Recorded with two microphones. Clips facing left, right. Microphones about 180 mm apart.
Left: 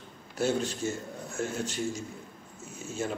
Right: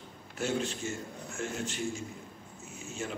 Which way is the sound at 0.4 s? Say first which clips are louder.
Left 4 dB; 40° left (ahead or behind).